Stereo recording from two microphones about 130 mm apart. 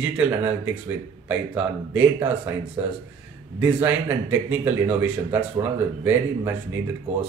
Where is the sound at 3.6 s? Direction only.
15° right (ahead or behind).